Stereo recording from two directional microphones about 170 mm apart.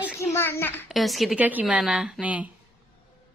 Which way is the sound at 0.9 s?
Centre (ahead or behind).